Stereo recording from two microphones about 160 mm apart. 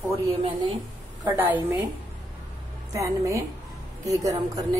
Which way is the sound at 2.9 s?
20° right (ahead or behind).